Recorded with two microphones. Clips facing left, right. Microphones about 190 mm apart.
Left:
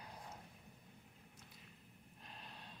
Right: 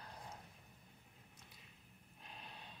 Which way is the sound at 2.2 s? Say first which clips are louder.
Right 1 dB; centre (ahead or behind).